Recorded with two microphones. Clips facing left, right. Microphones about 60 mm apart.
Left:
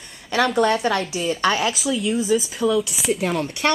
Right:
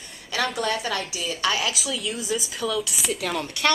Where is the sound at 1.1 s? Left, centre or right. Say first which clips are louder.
Left 5 dB; left.